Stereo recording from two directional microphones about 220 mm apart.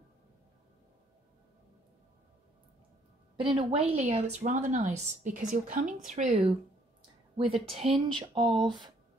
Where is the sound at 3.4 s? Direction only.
25° right (ahead or behind).